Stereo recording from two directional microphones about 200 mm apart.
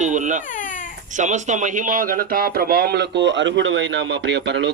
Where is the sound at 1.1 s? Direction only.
35° right (ahead or behind).